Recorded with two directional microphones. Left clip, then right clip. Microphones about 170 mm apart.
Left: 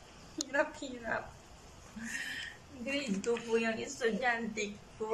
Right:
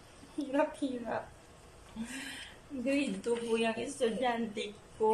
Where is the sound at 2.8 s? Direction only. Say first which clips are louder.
Right 2 dB; 15° right (ahead or behind).